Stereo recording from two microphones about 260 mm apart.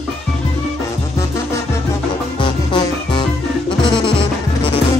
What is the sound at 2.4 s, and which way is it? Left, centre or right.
Music, centre.